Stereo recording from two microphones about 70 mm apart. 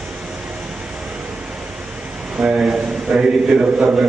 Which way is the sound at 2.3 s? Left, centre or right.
Centre.